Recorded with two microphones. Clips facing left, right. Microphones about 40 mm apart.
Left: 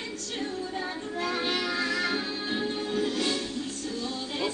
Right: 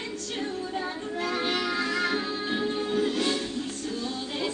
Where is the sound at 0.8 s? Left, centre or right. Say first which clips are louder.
Right 1 dB; centre.